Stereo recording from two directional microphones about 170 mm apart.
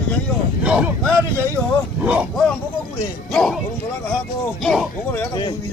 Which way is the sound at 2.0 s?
5° right (ahead or behind).